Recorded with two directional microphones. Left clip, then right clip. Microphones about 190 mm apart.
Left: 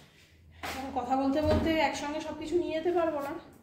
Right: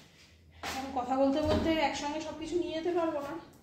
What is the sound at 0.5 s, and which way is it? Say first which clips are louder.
Speech: even; 5° left (ahead or behind).